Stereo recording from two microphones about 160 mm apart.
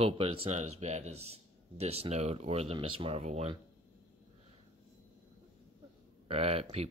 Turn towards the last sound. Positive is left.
turn(degrees=-40)  # may be behind; listen again after turning